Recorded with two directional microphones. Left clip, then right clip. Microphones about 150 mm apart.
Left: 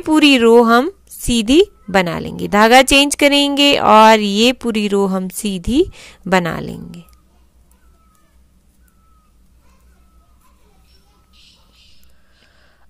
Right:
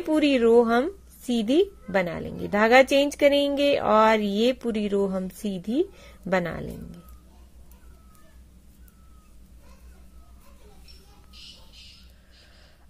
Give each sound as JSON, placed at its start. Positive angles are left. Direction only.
{"t": 0.0, "sound": "speech", "side_deg": 55}